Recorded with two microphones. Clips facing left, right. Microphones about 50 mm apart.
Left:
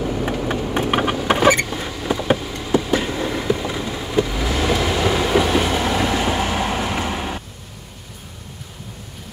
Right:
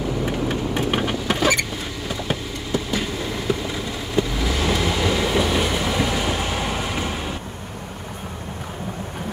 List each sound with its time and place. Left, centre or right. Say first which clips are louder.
0.2 s vehicle: left 1 dB; left
3.4 s vehicle: left 3 dB; centre